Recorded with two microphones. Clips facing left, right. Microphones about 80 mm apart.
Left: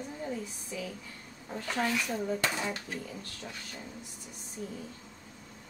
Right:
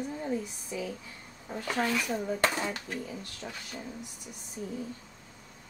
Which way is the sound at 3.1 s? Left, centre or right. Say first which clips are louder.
Right 2 dB; centre.